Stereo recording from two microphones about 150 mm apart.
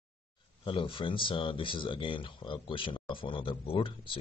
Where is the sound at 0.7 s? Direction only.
35° left (ahead or behind).